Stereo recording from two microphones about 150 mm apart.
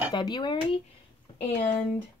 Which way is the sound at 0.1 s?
30° left (ahead or behind).